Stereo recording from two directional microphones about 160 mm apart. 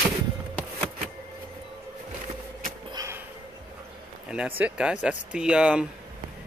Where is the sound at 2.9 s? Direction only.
20° right (ahead or behind).